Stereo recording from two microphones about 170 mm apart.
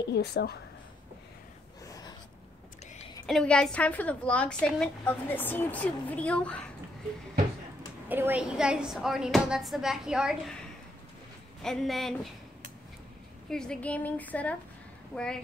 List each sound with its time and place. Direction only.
0.1 s speech: 70° left (ahead or behind)
1.9 s a sound: 20° left (ahead or behind)
3.3 s a woman's voice: 5° left (ahead or behind)
8.1 s speech: 10° right (ahead or behind)
11.6 s speech: centre (ahead or behind)
13.5 s a woman's voice: 5° left (ahead or behind)